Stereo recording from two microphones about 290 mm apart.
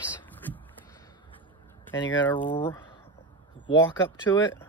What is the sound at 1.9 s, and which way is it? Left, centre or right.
Speech, centre.